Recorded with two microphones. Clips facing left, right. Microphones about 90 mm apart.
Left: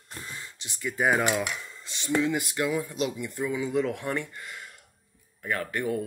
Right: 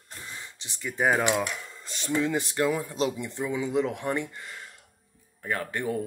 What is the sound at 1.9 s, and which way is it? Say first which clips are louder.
Speech: left 1 dB; 40° right (ahead or behind).